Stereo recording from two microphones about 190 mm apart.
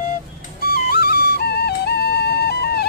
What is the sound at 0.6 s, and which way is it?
Music, 55° left (ahead or behind).